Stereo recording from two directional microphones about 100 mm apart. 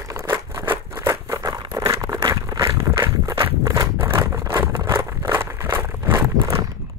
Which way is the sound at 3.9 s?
25° right (ahead or behind).